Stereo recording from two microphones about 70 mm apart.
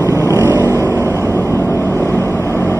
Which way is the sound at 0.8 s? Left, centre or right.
Left.